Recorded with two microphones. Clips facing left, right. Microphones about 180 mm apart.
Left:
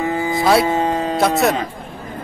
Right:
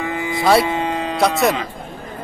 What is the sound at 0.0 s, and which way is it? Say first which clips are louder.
Music: left 4 dB; 35° left (ahead or behind).